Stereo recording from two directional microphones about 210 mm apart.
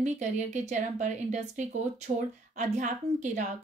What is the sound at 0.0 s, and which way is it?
A woman's voice, 35° right (ahead or behind).